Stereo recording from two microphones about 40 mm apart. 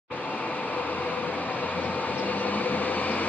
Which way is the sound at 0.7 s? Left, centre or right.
Left.